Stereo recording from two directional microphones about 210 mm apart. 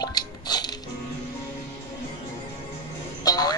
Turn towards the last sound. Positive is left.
turn(degrees=15)  # may be behind; listen again after turning